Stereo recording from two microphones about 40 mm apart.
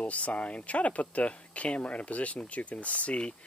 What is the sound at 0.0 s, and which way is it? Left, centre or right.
Speech, left.